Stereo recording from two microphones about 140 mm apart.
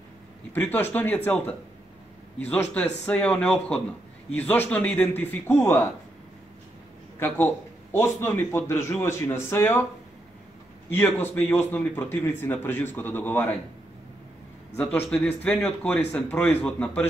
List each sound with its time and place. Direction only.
0.5 s a man's voice: 15° left (ahead or behind)
7.2 s a man's voice: 15° left (ahead or behind)
10.9 s a man's voice: 15° left (ahead or behind)
14.8 s a man's voice: 10° left (ahead or behind)